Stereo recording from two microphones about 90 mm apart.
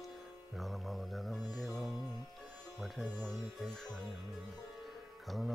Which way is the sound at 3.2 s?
Centre (ahead or behind).